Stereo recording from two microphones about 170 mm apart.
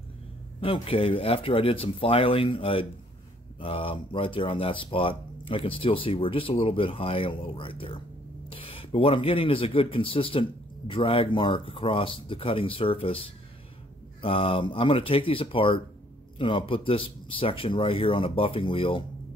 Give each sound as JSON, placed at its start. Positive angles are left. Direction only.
{"t": 0.6, "sound": "speech", "side_deg": 30}